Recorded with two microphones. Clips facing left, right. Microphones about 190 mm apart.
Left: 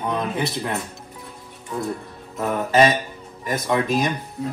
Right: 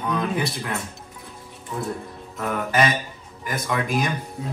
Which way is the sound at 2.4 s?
25° left (ahead or behind).